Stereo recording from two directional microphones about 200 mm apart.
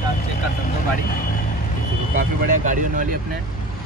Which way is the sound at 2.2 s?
40° right (ahead or behind).